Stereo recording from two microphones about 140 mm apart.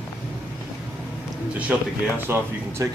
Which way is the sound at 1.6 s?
10° right (ahead or behind).